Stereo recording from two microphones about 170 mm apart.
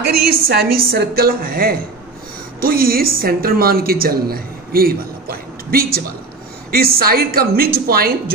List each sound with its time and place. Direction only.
0.4 s a woman's voice: 65° right (ahead or behind)